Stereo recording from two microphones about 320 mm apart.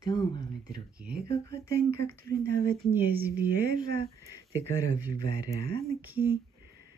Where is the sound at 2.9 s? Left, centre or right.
Centre.